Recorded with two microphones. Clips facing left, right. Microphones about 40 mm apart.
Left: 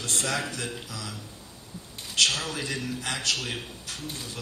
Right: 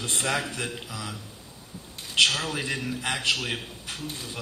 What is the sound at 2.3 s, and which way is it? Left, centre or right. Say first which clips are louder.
A man's voice: right 2 dB; centre.